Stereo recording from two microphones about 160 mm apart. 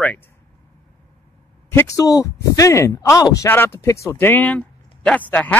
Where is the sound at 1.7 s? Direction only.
15° left (ahead or behind).